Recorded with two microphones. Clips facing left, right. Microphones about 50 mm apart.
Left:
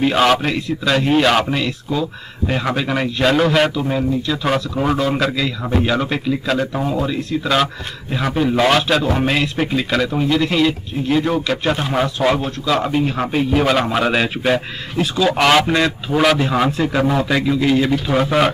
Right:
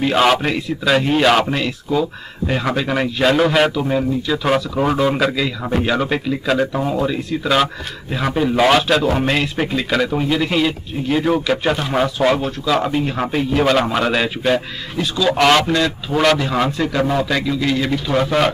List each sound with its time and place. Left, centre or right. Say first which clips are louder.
0.0 s a man's voice: even; centre